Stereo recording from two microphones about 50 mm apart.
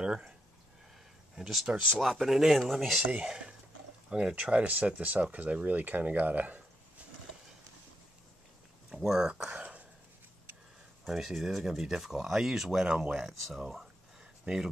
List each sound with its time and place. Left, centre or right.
0.0 s a sound: centre
1.3 s speech: centre
3.3 s speech: centre
4.4 s speech: right
8.9 s speech: centre
9.5 s a sound: right
11.1 s speech: centre
13.3 s speech: centre